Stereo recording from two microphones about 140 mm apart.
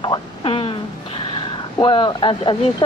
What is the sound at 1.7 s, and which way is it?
Speech, 35° left (ahead or behind).